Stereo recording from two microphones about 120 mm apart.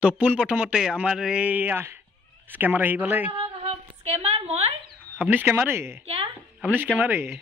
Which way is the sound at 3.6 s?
60° right (ahead or behind).